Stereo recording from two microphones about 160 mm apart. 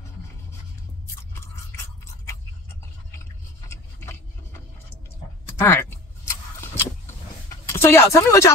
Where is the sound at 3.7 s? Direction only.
15° left (ahead or behind).